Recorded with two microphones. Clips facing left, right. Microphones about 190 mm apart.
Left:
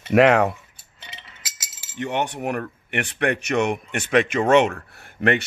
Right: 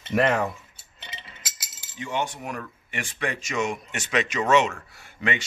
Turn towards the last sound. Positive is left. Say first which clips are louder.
# left 8 dB
turn(degrees=60)  # may be behind; listen again after turning